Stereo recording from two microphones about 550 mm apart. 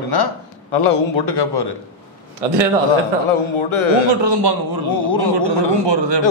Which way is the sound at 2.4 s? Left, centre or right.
Right.